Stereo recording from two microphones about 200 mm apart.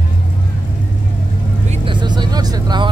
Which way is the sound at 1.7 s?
25° right (ahead or behind).